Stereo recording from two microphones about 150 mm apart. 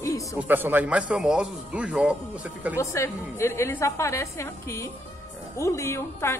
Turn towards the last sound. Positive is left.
turn(degrees=15)  # may be behind; listen again after turning